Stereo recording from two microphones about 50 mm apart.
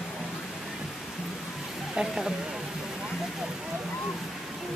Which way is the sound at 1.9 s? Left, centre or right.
Centre.